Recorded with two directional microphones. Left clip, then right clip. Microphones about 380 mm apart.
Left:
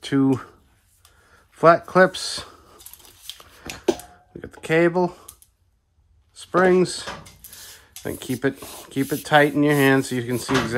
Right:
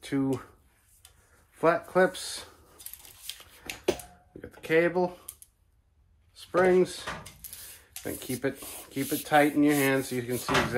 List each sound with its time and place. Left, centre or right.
0.0 s speech: left
1.5 s speech: centre
3.6 s a sound: left
6.3 s speech: centre